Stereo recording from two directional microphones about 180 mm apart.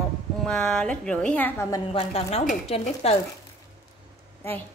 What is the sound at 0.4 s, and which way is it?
A woman's voice, 5° left (ahead or behind).